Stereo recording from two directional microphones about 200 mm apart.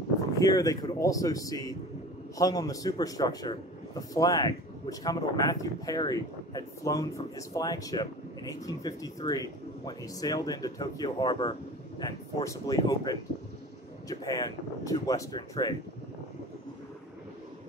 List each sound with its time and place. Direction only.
0.4 s speech: 20° left (ahead or behind)